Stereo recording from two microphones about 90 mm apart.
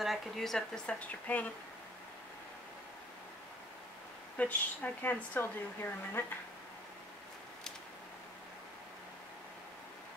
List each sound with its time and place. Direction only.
0.0 s a woman's voice: centre (ahead or behind); by 1.5 s 15° left (ahead or behind)
4.4 s speech: 15° left (ahead or behind)